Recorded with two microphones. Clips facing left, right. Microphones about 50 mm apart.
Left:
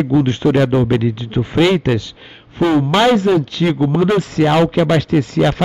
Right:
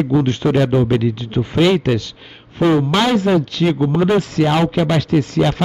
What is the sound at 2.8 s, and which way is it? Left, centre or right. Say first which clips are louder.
Speech: left 3 dB; centre.